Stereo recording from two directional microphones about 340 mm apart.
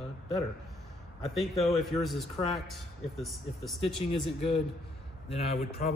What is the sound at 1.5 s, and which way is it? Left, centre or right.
A man's voice, centre.